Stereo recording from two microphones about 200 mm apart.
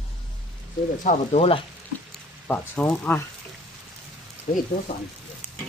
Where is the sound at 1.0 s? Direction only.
30° left (ahead or behind).